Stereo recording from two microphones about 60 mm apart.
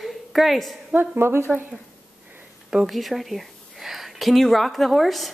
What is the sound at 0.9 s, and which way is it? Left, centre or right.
Speech, right.